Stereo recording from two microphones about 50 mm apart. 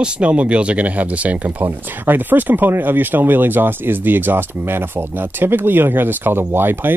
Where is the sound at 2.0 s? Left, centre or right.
Right.